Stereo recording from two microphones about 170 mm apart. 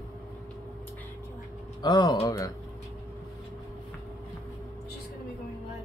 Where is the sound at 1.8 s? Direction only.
20° left (ahead or behind).